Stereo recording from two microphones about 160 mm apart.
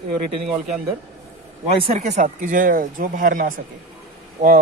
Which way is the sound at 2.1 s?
55° right (ahead or behind).